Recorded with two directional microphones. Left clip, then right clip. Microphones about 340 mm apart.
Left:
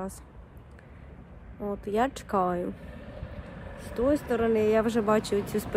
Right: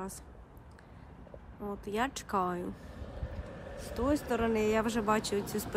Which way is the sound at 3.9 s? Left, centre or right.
Centre.